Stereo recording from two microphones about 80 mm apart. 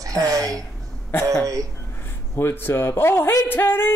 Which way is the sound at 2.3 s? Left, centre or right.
Left.